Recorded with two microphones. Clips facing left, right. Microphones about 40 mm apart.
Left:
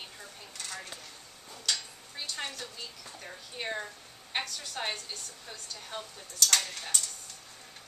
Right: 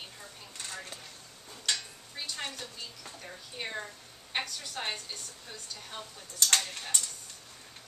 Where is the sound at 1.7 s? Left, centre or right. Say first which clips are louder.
Even; right.